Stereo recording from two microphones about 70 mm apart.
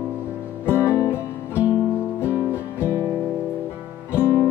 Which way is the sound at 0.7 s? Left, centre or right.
Left.